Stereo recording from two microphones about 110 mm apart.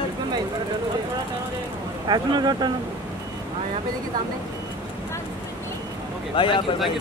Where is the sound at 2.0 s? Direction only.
40° right (ahead or behind).